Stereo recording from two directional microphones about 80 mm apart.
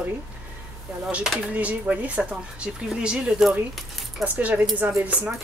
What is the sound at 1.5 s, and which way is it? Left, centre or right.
A woman's voice, centre.